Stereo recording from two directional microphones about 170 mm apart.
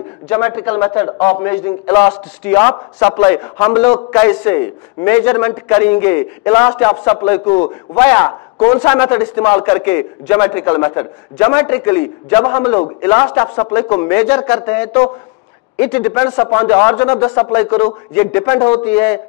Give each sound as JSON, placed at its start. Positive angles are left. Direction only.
{"t": 0.3, "sound": "a man's voice", "side_deg": 15}
{"t": 18.4, "sound": "speech", "side_deg": 20}
{"t": 18.7, "sound": "a man's voice", "side_deg": 10}